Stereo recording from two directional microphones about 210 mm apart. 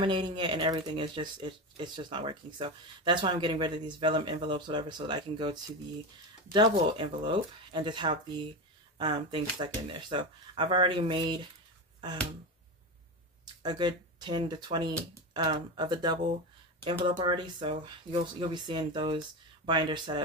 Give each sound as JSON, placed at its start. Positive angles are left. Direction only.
{"t": 0.0, "sound": "speech", "side_deg": -20}
{"t": 13.6, "sound": "speech", "side_deg": -20}